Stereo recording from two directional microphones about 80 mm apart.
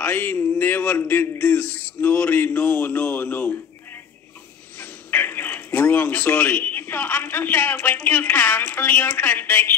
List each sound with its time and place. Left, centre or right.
0.0 s a man's voice: left